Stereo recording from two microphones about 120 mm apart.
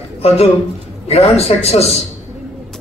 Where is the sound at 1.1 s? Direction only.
60° left (ahead or behind).